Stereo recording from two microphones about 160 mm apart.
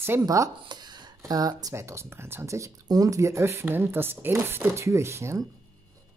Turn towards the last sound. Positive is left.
turn(degrees=-15)  # may be behind; listen again after turning